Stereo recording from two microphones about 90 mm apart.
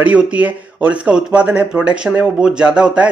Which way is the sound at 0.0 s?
15° right (ahead or behind).